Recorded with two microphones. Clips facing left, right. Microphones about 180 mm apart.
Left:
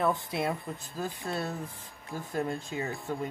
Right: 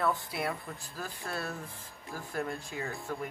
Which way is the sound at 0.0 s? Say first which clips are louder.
Left 3 dB; 20° left (ahead or behind).